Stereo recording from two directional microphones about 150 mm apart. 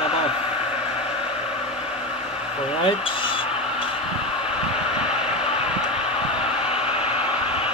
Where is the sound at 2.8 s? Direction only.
35° left (ahead or behind).